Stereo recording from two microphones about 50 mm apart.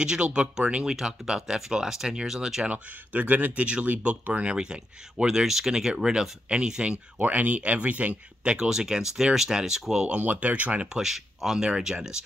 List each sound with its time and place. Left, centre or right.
0.0 s speech: centre
2.7 s speech: right
8.5 s speech: centre
10.0 s speech: right
10.9 s speech: centre